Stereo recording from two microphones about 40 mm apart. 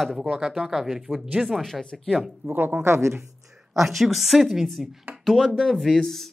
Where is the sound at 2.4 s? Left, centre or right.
Right.